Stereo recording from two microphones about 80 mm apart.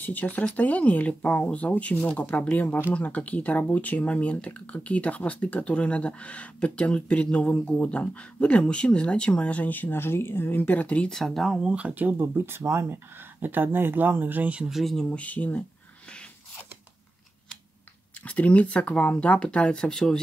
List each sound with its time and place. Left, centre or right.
0.0 s speech: left
11.1 s speech: centre
11.7 s speech: centre
14.7 s speech: centre
18.2 s speech: centre